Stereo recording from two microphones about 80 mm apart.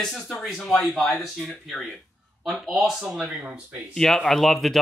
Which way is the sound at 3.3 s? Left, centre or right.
Centre.